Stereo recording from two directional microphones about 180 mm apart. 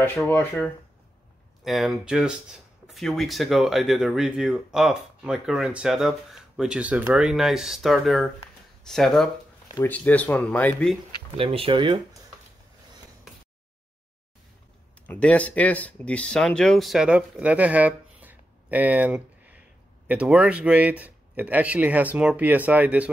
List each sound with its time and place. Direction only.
0.0 s speech: 10° left (ahead or behind)
1.6 s speech: centre (ahead or behind)
11.3 s speech: 30° right (ahead or behind)
15.0 s a man's voice: 5° left (ahead or behind); by 23.0 s 10° right (ahead or behind)